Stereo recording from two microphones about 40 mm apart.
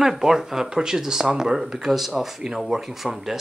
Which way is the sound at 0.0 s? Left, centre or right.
Centre.